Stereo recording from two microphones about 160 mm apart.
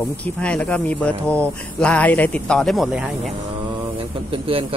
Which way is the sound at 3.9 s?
35° right (ahead or behind).